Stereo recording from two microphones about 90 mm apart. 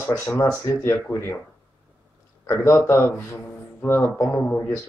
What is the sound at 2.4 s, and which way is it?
A man's voice, 30° left (ahead or behind).